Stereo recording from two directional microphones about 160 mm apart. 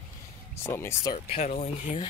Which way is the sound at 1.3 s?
45° left (ahead or behind).